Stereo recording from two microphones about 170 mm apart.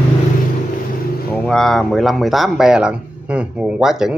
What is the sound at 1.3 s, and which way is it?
Speech, 5° left (ahead or behind).